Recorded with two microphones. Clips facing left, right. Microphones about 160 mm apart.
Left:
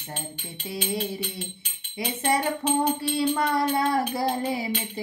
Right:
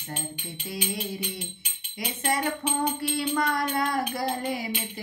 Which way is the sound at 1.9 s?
30° left (ahead or behind).